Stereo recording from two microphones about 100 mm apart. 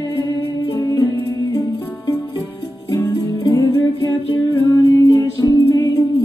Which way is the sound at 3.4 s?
35° left (ahead or behind).